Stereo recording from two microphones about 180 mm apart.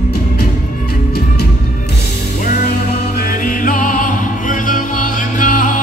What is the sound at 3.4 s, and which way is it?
Music, 50° left (ahead or behind).